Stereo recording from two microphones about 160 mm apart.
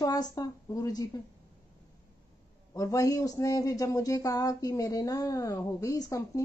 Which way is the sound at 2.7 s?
20° left (ahead or behind).